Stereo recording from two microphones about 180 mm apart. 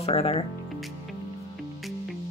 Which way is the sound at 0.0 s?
35° left (ahead or behind).